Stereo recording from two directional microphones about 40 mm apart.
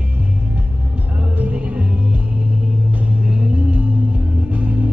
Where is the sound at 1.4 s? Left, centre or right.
Right.